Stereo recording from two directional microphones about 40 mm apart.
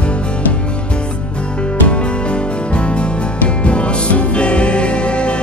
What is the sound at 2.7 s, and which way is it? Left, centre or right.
Music, left.